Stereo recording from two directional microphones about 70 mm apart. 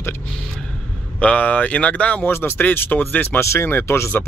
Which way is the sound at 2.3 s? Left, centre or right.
Left.